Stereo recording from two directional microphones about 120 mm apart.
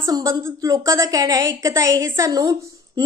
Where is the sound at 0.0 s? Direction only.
30° right (ahead or behind).